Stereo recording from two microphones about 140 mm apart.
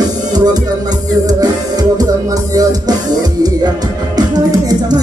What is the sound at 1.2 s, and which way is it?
Music, 30° right (ahead or behind).